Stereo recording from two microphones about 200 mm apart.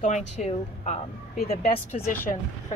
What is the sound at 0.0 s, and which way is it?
A woman's voice, 35° left (ahead or behind).